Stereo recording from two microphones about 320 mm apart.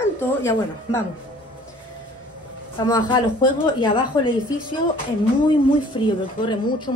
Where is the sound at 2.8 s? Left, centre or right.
Centre.